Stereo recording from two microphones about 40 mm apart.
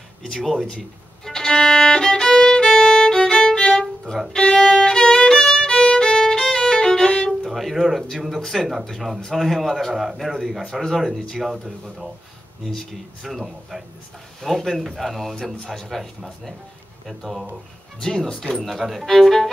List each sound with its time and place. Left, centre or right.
0.3 s speech: centre
1.2 s violin: centre
7.4 s music: centre
8.4 s a man's voice: centre
11.1 s speech: centre
11.5 s speech: centre
12.6 s speech: centre
13.3 s a man's voice: centre
18.0 s speech: centre
18.6 s a man's voice: centre
19.0 s speech: centre